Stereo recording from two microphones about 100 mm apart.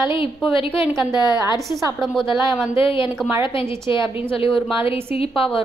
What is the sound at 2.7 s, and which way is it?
A woman's voice, 60° left (ahead or behind).